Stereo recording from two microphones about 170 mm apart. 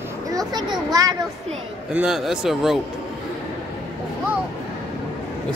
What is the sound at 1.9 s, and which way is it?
Speech, 5° right (ahead or behind).